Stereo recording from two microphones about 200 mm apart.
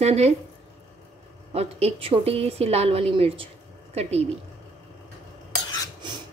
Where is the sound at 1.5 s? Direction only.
30° right (ahead or behind).